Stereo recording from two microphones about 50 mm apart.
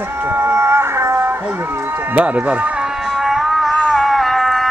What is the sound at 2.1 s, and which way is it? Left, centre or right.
Speech, right.